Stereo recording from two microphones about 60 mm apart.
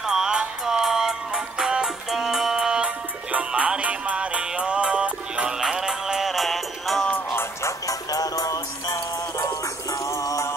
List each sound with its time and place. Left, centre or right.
0.0 s music: centre
3.3 s music: right
5.6 s music: centre
7.8 s music: left
9.5 s music: left